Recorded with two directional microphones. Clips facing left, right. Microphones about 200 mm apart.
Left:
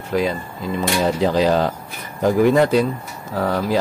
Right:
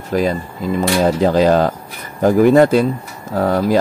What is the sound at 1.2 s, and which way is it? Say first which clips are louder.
Speech: right 4 dB; 50° right (ahead or behind).